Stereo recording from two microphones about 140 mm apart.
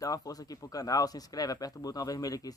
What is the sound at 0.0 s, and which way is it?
Speech, 25° left (ahead or behind).